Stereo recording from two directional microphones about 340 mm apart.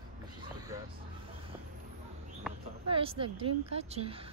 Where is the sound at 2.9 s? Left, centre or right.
Centre.